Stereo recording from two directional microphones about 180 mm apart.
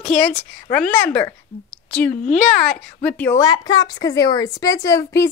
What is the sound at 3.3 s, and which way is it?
A woman's voice, 20° left (ahead or behind).